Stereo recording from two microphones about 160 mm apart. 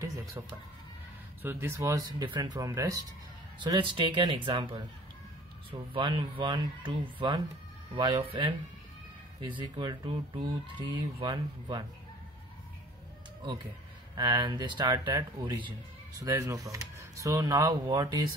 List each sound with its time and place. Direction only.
0.0 s music: 20° right (ahead or behind)
1.4 s speech: 15° right (ahead or behind); by 8.5 s 30° right (ahead or behind)
9.6 s speech: 30° right (ahead or behind)
14.1 s speech: 25° right (ahead or behind)